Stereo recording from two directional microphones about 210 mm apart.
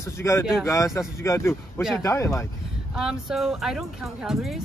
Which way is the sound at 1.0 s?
15° left (ahead or behind).